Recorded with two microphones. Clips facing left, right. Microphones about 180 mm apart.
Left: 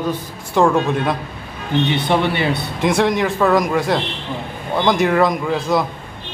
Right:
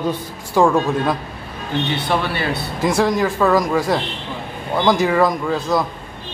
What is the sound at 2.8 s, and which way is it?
A man's voice, 5° right (ahead or behind).